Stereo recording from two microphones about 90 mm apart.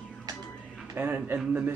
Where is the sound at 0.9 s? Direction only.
25° right (ahead or behind).